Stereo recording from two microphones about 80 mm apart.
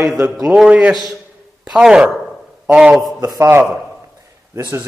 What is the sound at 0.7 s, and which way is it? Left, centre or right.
A man's voice, centre.